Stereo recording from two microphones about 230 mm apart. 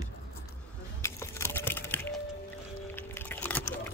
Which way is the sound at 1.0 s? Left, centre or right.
Centre.